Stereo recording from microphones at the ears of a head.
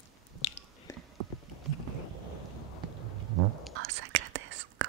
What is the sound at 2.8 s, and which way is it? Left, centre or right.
Whispering, right.